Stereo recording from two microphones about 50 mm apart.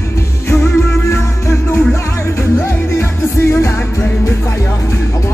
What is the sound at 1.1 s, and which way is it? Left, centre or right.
Music, left.